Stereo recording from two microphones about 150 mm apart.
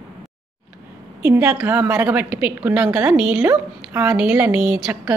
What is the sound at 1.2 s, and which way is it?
A woman's voice, 15° right (ahead or behind).